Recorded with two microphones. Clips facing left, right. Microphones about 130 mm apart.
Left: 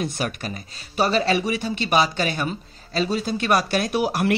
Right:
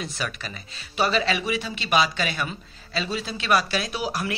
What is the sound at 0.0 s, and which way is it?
Speech, 50° left (ahead or behind).